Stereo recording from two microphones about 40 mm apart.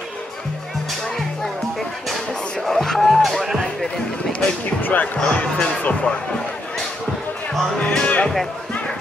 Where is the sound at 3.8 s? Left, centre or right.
Centre.